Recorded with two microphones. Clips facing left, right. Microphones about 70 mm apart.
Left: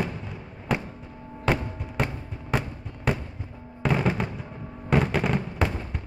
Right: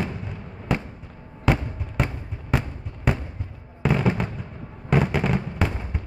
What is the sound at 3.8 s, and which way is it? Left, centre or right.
Fireworks, centre.